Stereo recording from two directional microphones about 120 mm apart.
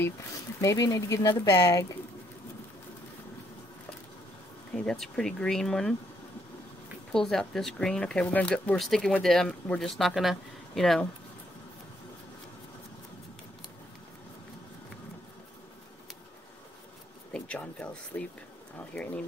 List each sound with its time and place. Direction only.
0.6 s speech: 25° left (ahead or behind)
4.7 s speech: 5° left (ahead or behind)
7.1 s speech: 5° left (ahead or behind)
17.3 s speech: 10° left (ahead or behind)